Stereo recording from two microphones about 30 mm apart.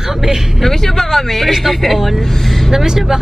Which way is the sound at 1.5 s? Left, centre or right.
Centre.